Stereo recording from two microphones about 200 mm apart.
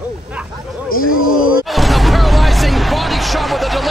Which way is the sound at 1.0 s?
90° left.